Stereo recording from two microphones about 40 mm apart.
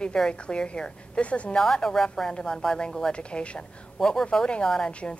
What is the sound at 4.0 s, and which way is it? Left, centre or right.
Speech, centre.